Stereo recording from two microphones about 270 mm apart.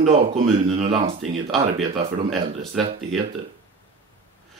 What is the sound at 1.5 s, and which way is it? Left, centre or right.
Speech, centre.